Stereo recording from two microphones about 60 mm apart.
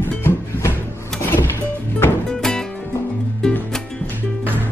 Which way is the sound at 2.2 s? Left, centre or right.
Centre.